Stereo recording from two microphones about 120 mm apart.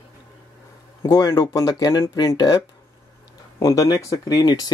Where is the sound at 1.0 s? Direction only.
30° left (ahead or behind).